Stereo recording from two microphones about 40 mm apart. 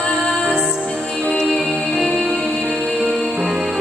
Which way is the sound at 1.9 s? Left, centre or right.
Centre.